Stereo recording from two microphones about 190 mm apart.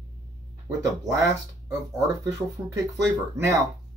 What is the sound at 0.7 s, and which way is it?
Speech, 15° right (ahead or behind).